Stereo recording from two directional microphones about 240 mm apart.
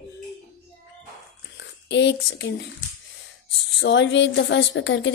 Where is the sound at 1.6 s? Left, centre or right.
Left.